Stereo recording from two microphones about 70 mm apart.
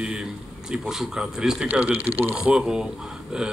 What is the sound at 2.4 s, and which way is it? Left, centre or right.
Speech, centre.